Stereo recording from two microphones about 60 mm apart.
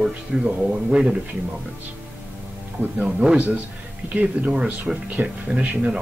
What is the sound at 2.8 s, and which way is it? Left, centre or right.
Speech, right.